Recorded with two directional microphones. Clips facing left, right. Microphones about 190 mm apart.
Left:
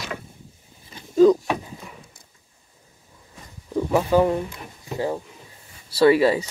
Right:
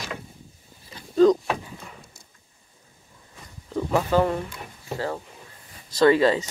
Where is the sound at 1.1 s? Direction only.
10° left (ahead or behind).